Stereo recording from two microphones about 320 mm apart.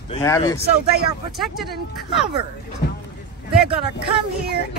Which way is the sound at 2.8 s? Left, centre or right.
Left.